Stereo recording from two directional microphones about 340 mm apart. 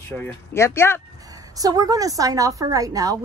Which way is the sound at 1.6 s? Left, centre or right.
Centre.